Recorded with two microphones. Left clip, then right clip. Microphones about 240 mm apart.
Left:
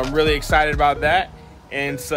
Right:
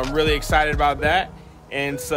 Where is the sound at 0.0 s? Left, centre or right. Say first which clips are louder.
Left 2 dB; centre.